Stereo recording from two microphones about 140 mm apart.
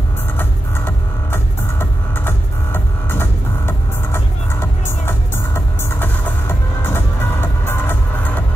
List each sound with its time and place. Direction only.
0.4 s music: 15° left (ahead or behind)